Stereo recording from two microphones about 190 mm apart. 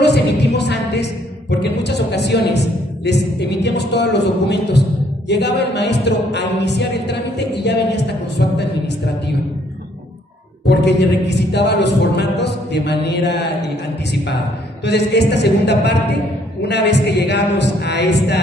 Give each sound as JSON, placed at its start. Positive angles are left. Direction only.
{"t": 0.0, "sound": "a sound", "side_deg": 60}
{"t": 5.3, "sound": "a capella", "side_deg": 65}
{"t": 10.7, "sound": "a capella", "side_deg": 65}
{"t": 14.9, "sound": "a capella", "side_deg": 60}